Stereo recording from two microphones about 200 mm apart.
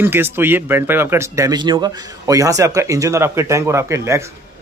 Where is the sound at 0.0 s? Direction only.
10° right (ahead or behind).